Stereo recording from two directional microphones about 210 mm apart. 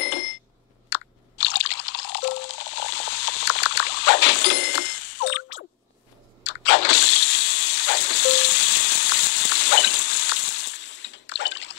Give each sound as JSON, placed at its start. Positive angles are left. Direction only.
{"t": 0.8, "sound": "crunch", "side_deg": 55}
{"t": 6.4, "sound": "water", "side_deg": 60}